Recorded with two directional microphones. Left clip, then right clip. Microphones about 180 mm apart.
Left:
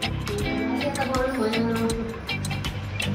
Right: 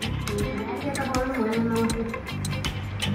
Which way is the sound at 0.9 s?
Centre (ahead or behind).